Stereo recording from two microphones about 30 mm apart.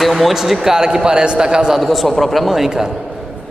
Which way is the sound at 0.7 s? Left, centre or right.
Right.